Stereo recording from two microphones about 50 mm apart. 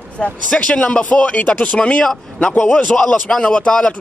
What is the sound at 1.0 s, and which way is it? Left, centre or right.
Speech, left.